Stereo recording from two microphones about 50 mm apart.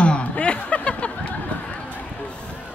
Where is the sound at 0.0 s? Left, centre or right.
Left.